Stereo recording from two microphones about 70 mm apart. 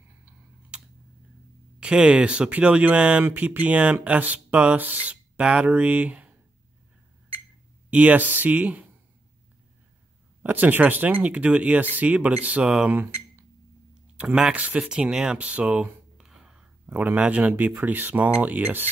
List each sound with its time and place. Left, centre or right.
0.7 s a sound: centre
1.8 s speech: centre
7.9 s speech: right
10.4 s speech: right
12.9 s a sound: right
14.1 s speech: centre
16.2 s whispering: centre
16.8 s speech: right